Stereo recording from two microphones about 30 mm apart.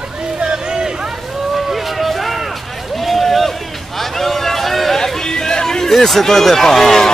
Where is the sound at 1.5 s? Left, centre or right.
Centre.